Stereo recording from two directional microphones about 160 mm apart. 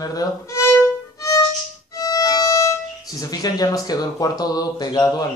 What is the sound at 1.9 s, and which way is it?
Speech, 25° left (ahead or behind).